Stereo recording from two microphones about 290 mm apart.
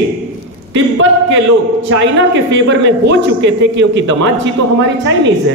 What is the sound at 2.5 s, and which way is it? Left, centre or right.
A man's voice, right.